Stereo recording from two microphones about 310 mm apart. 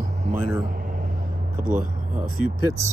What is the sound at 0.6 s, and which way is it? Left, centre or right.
Vehicle, right.